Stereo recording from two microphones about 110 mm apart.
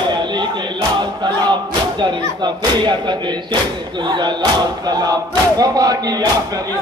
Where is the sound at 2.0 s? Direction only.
40° right (ahead or behind).